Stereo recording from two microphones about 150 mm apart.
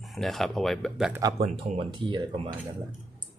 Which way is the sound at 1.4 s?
35° right (ahead or behind).